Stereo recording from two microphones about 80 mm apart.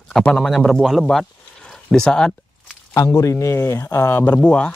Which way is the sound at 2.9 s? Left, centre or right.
Left.